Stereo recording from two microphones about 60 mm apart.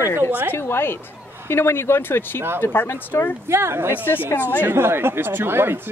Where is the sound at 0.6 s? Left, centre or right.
Left.